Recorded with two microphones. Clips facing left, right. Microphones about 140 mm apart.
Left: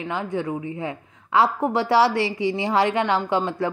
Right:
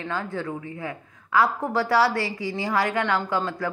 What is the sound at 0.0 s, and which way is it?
A woman's voice, 20° left (ahead or behind).